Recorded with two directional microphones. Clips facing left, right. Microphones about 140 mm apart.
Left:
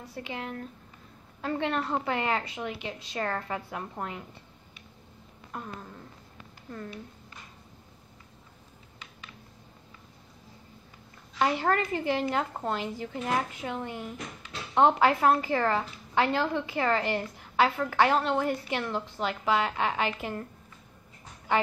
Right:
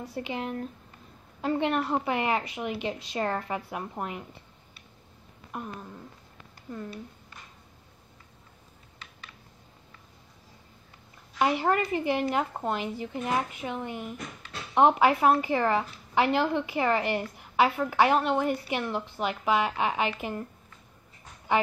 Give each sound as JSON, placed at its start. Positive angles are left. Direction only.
{"t": 0.1, "sound": "a woman's voice", "side_deg": -20}
{"t": 5.5, "sound": "a woman's voice", "side_deg": -10}
{"t": 11.3, "sound": "a woman's voice", "side_deg": -10}